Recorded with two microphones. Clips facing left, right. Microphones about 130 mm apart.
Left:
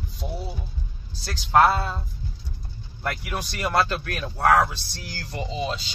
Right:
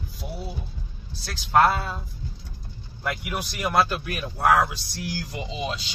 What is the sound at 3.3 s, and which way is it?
Speech, 5° right (ahead or behind).